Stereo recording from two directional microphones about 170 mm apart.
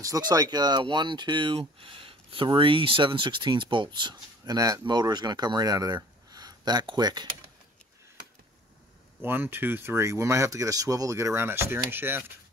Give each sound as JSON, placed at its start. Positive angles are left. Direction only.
{"t": 0.3, "sound": "speech", "side_deg": -25}
{"t": 9.2, "sound": "speech", "side_deg": -10}